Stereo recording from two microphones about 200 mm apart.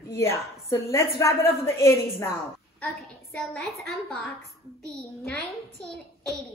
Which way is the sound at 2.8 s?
Centre (ahead or behind).